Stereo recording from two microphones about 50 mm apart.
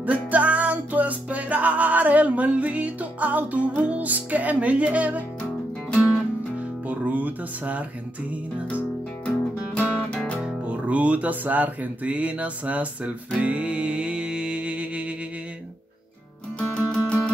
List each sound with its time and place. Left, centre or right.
0.0 s music: right
6.9 s music: right
9.8 s music: left
10.4 s speech: right
16.5 s music: left